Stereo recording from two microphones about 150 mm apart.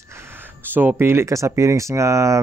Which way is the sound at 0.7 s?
15° right (ahead or behind).